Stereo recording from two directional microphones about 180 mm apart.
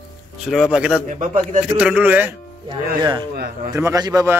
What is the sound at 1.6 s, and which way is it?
Speech, 10° right (ahead or behind).